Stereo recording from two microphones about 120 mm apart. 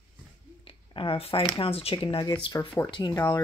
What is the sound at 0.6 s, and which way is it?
Speech, 45° left (ahead or behind).